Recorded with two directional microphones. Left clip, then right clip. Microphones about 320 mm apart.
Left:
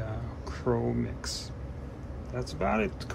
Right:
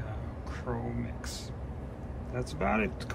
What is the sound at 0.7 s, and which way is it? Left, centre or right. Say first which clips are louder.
Speech: left 8 dB; left.